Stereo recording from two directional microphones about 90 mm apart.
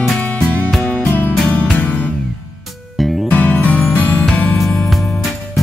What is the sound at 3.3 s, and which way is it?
Music, 20° left (ahead or behind).